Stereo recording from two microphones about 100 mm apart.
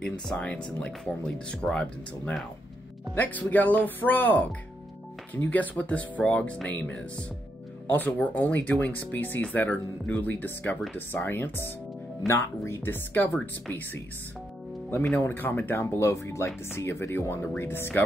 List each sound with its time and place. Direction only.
0.3 s speech: 10° left (ahead or behind)
14.9 s speech: 15° left (ahead or behind)